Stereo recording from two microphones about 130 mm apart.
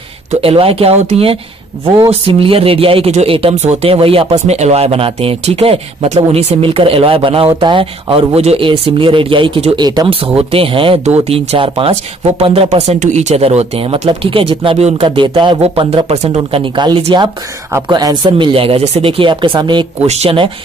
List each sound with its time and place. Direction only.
0.3 s speech: 50° right (ahead or behind)
3.5 s speech: 60° right (ahead or behind); by 10.1 s 30° right (ahead or behind)
10.2 s speech: 50° right (ahead or behind)
13.0 s speech: 60° right (ahead or behind)
16.3 s speech: 35° right (ahead or behind)
20.1 s speech: 50° right (ahead or behind)